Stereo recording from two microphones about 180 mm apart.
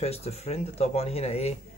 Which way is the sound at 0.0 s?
35° left (ahead or behind).